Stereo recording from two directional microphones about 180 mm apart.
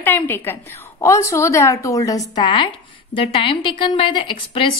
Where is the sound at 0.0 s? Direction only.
10° left (ahead or behind).